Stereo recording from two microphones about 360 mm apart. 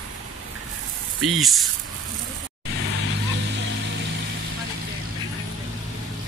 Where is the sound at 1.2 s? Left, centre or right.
Centre.